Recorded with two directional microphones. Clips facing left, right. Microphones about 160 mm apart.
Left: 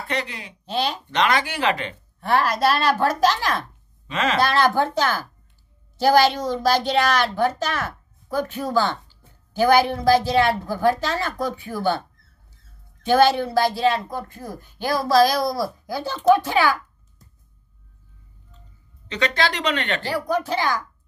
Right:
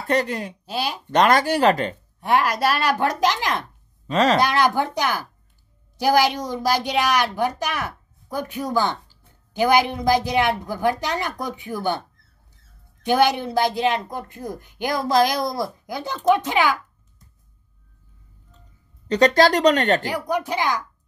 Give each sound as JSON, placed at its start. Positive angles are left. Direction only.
{"t": 0.1, "sound": "speech", "side_deg": -45}
{"t": 0.7, "sound": "speech", "side_deg": -10}
{"t": 1.1, "sound": "speech", "side_deg": -45}
{"t": 2.1, "sound": "speech", "side_deg": -15}
{"t": 4.1, "sound": "speech", "side_deg": -35}
{"t": 4.4, "sound": "speech", "side_deg": -15}
{"t": 13.0, "sound": "speech", "side_deg": -15}
{"t": 19.0, "sound": "speech", "side_deg": -40}
{"t": 20.1, "sound": "speech", "side_deg": -15}